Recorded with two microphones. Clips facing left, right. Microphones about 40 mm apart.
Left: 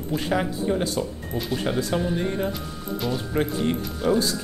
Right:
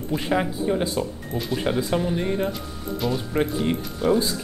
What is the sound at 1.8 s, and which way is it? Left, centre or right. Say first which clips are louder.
Speech: right 1 dB; centre.